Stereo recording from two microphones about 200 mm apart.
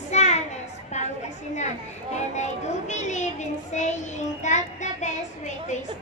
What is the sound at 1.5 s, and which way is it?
A child's voice, 35° left (ahead or behind).